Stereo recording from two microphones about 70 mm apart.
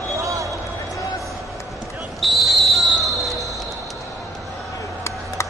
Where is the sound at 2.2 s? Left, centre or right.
Centre.